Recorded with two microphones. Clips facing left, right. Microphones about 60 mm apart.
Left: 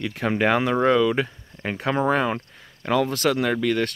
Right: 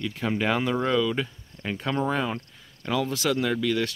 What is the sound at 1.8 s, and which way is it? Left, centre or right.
Speech, left.